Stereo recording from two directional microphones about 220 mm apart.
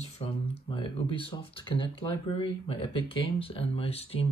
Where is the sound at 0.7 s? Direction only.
25° left (ahead or behind).